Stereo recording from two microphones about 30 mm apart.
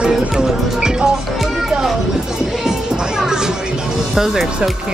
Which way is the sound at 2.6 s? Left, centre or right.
Centre.